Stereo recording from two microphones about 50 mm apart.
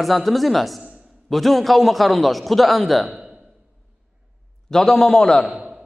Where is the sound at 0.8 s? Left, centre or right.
Right.